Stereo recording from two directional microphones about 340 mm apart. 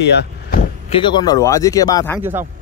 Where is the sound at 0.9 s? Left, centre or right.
Centre.